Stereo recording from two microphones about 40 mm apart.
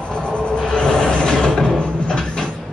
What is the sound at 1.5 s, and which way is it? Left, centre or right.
Music, centre.